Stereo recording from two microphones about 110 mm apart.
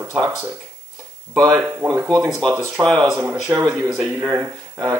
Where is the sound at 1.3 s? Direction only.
25° right (ahead or behind).